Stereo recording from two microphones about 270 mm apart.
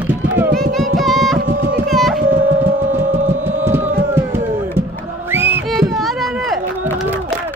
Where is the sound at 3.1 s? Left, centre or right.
Right.